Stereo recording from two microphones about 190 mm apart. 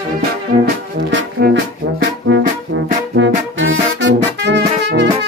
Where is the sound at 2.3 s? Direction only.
75° right (ahead or behind).